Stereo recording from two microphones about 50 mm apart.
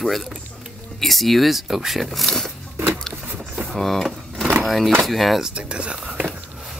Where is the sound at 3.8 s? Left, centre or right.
Centre.